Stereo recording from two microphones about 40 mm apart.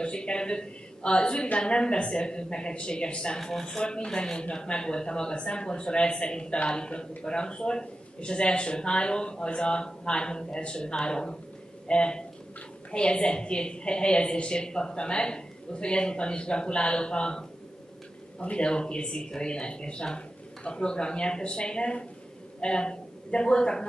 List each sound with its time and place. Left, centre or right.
0.0 s a woman's voice: left
3.3 s speech: centre
3.6 s a woman's voice: left